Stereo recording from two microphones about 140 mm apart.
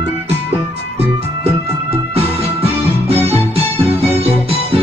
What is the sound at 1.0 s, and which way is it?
Music, 45° right (ahead or behind).